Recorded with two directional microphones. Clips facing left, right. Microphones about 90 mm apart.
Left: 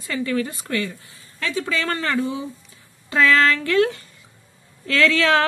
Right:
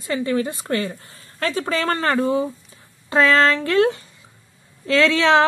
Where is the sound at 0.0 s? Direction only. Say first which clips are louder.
Right 2 dB; 25° right (ahead or behind).